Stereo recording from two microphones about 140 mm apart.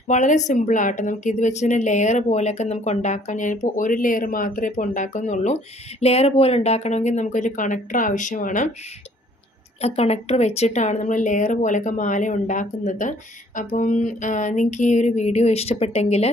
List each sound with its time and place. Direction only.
0.1 s speech: 60° left (ahead or behind)
9.8 s speech: 45° left (ahead or behind)